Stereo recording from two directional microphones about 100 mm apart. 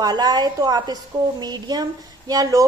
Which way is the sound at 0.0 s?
45° right (ahead or behind).